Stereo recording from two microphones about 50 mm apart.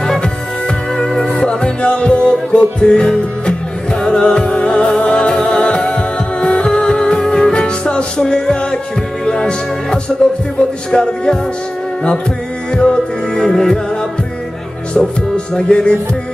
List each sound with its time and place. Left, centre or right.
0.0 s music: centre
12.7 s music: centre
15.0 s music: centre